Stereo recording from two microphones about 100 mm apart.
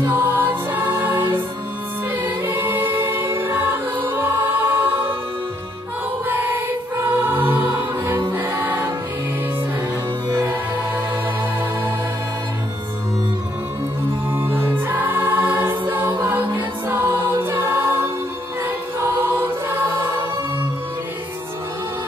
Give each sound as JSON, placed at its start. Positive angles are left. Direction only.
{"t": 0.0, "sound": "music", "side_deg": -20}
{"t": 2.2, "sound": "choir", "side_deg": -20}
{"t": 6.2, "sound": "choir", "side_deg": -20}
{"t": 7.2, "sound": "music", "side_deg": -20}
{"t": 8.4, "sound": "choir", "side_deg": -20}
{"t": 14.3, "sound": "choir", "side_deg": -20}